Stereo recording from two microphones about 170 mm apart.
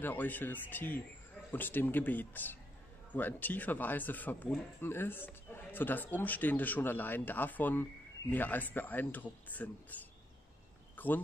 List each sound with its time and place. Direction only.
0.0 s speech: 10° left (ahead or behind)
11.0 s cricket: 10° left (ahead or behind)